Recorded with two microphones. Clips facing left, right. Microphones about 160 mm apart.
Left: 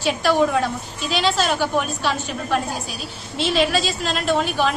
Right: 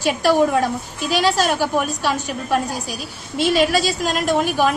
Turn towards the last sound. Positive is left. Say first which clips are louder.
# right 2 dB
turn(degrees=-10)  # may be behind; listen again after turning